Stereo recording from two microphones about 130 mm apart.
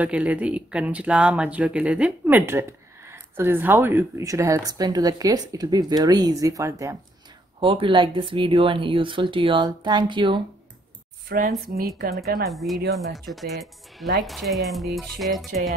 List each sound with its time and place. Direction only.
0.0 s speech: 10° right (ahead or behind)
7.6 s speech: 40° right (ahead or behind)
11.9 s speech: centre (ahead or behind)